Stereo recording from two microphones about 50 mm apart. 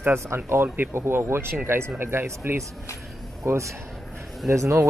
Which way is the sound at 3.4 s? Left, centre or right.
Right.